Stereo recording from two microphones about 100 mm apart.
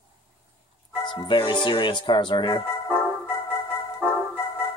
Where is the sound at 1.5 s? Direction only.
50° left (ahead or behind).